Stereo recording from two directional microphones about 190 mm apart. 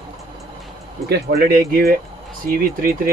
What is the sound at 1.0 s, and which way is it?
Speech, 55° right (ahead or behind).